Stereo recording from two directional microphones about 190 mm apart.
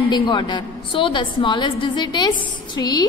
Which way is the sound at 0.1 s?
25° left (ahead or behind).